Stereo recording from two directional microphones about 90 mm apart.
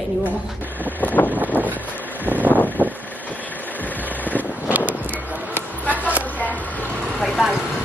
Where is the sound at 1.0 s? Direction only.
20° left (ahead or behind).